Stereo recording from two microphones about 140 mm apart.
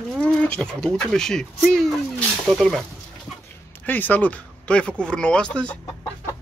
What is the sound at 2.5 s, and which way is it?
Speech, centre (ahead or behind).